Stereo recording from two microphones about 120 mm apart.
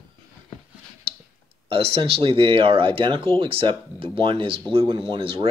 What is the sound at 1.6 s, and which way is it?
Speech, 50° right (ahead or behind).